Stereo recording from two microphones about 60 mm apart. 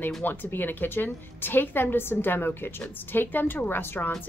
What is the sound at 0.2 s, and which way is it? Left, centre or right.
A woman's voice, left.